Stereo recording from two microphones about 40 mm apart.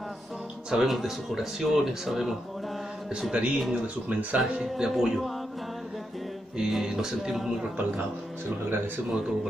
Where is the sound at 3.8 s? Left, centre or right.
Right.